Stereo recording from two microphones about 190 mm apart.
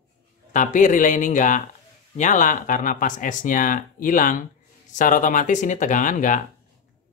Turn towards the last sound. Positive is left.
turn(degrees=40)  # may be behind; listen again after turning